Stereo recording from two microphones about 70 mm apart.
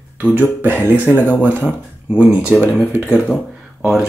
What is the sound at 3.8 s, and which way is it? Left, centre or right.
Speech, centre.